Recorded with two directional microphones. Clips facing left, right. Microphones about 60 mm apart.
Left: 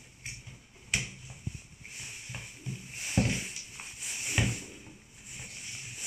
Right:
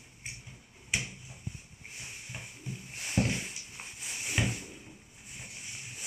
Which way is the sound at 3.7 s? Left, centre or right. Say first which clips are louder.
Even; right.